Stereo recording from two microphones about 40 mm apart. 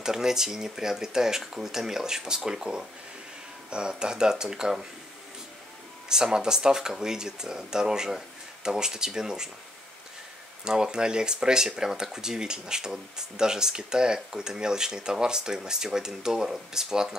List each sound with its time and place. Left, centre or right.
0.0 s speech: centre
6.0 s speech: centre
10.6 s speech: centre